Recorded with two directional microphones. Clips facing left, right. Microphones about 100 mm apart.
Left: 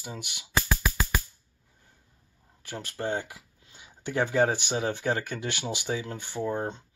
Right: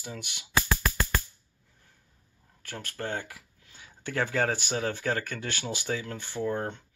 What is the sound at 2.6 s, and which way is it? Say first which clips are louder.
Speech: left 3 dB; 15° left (ahead or behind).